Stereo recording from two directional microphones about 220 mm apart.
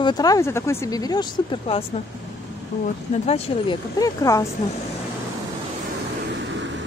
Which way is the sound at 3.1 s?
30° left (ahead or behind).